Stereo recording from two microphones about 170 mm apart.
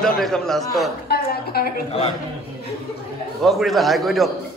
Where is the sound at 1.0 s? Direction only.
65° left (ahead or behind).